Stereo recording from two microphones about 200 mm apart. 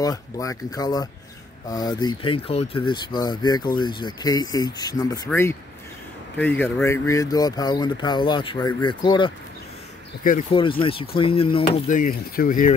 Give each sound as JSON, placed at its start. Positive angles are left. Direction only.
{"t": 0.0, "sound": "speech", "side_deg": 15}
{"t": 10.5, "sound": "speech", "side_deg": 25}
{"t": 12.0, "sound": "speech", "side_deg": 45}